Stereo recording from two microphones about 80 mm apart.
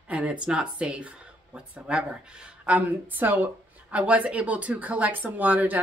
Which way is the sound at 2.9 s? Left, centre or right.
Right.